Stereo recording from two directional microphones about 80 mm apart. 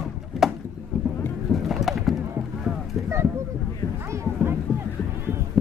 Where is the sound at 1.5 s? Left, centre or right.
Centre.